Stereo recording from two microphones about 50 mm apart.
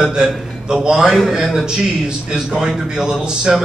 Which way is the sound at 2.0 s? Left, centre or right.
Centre.